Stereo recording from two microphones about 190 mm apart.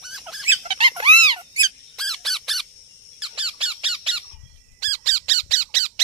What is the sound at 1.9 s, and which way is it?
Squawk, centre (ahead or behind).